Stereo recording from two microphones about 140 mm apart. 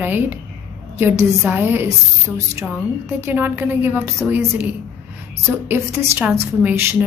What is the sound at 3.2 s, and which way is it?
A woman's voice, 15° right (ahead or behind).